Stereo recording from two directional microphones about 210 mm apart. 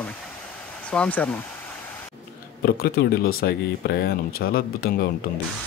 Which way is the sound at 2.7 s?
45° left (ahead or behind).